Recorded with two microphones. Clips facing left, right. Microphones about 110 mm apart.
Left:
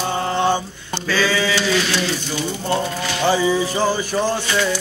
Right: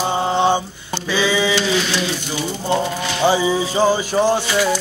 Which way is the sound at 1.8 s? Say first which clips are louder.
Even; 5° right (ahead or behind).